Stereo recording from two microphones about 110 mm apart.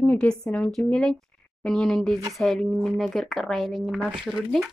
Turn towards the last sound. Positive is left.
turn(degrees=-5)  # may be behind; listen again after turning